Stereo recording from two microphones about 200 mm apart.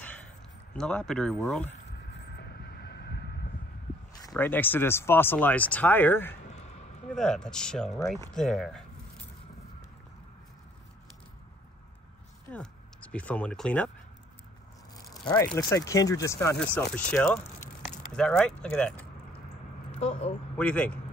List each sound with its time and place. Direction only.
0.7 s speech: 5° left (ahead or behind)
1.9 s a sound: 55° left (ahead or behind)
4.3 s speech: 10° left (ahead or behind)
12.4 s speech: 5° left (ahead or behind)
15.0 s speech: 15° left (ahead or behind)
20.0 s a woman's voice: 30° left (ahead or behind)
20.5 s speech: 5° left (ahead or behind)